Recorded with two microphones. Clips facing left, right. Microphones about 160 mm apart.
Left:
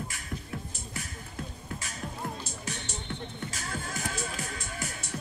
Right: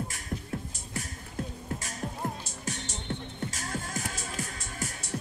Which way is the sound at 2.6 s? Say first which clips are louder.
Right 2 dB; 45° right (ahead or behind).